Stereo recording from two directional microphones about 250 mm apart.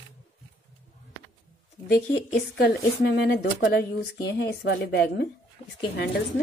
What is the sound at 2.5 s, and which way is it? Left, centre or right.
Speech, left.